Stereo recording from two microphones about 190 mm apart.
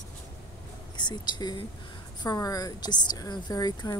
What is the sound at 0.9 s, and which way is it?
Speech, 20° left (ahead or behind).